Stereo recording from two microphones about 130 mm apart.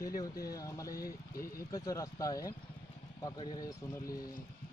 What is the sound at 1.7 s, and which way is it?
Speech, 25° left (ahead or behind).